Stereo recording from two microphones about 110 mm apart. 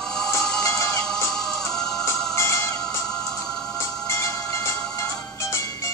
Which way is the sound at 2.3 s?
25° left (ahead or behind).